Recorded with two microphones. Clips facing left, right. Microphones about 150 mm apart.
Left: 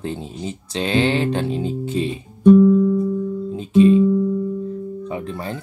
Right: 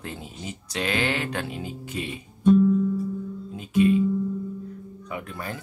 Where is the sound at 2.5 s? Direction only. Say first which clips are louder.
Left 7 dB; 65° left (ahead or behind).